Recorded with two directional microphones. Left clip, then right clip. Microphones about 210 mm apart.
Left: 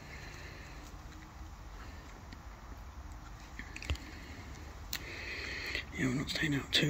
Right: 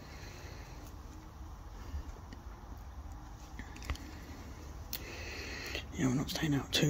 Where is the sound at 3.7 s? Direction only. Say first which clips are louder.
Left 3 dB; 10° left (ahead or behind).